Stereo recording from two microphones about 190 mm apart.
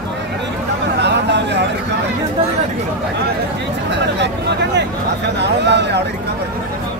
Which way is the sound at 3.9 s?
65° right (ahead or behind).